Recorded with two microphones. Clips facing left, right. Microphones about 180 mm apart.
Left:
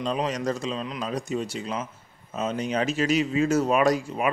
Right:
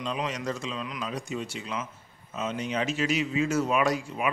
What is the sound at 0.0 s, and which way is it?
Speech, 40° left (ahead or behind).